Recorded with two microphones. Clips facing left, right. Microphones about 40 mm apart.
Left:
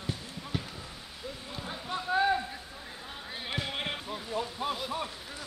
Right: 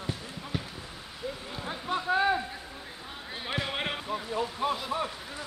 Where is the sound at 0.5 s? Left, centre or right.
Centre.